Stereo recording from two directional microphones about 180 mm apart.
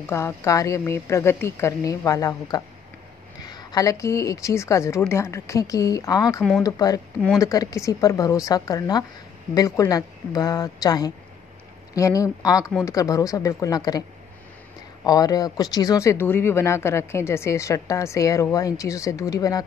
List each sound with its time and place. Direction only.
0.1 s speech: 15° left (ahead or behind)
15.0 s speech: 20° left (ahead or behind)